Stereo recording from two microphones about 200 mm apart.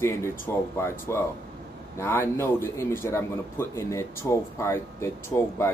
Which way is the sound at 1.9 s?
10° left (ahead or behind).